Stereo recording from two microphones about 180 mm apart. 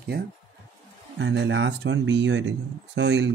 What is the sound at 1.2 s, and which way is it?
Speech, 85° right.